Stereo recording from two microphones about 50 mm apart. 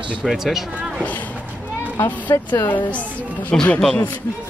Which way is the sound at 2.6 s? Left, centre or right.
Left.